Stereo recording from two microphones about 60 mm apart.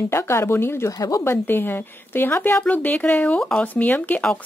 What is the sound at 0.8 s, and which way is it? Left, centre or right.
Speech, left.